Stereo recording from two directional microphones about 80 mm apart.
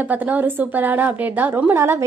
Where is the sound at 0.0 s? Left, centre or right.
Right.